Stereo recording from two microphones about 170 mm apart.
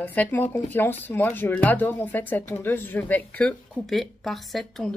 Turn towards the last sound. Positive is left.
turn(degrees=0)  # may be behind; listen again after turning